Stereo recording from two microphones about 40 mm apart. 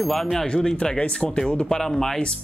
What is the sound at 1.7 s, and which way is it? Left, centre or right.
Speech, centre.